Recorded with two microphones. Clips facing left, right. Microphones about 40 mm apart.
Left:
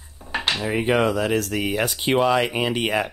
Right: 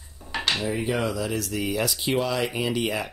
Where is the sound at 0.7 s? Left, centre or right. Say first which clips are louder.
Left 6 dB; left.